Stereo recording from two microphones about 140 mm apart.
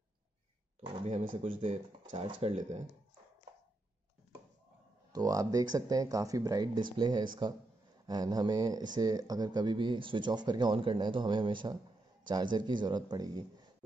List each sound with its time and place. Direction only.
0.8 s speech: 50° right (ahead or behind)
5.1 s speech: 25° right (ahead or behind)